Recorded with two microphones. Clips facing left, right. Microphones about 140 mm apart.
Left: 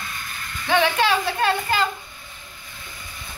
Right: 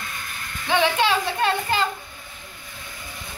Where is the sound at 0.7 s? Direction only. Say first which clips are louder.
Left 1 dB; 20° right (ahead or behind).